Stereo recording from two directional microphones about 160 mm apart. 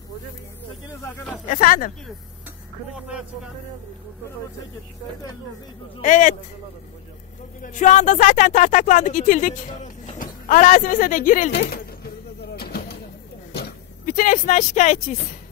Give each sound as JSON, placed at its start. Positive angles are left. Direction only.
{"t": 1.0, "sound": "speech", "side_deg": 15}
{"t": 1.5, "sound": "speech", "side_deg": 60}
{"t": 2.9, "sound": "speech", "side_deg": -5}
{"t": 6.0, "sound": "speech", "side_deg": 55}
{"t": 7.6, "sound": "speech", "side_deg": 55}
{"t": 11.5, "sound": "speech", "side_deg": 80}
{"t": 12.5, "sound": "a sound", "side_deg": 75}